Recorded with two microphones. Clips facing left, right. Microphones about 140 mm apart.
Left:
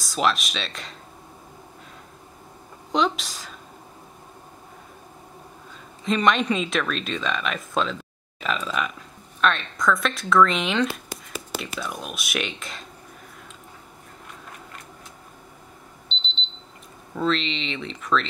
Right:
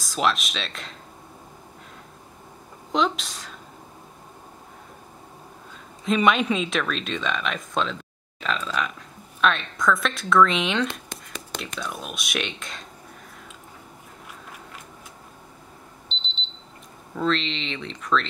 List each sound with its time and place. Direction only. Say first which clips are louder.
0.0 s speech: left 1 dB; centre (ahead or behind)
2.9 s speech: left 1 dB; centre (ahead or behind)
6.0 s speech: right 1 dB; 5° right (ahead or behind)
17.1 s speech: even; centre (ahead or behind)